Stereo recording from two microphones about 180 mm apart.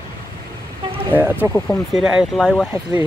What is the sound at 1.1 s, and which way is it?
Speech, 10° right (ahead or behind).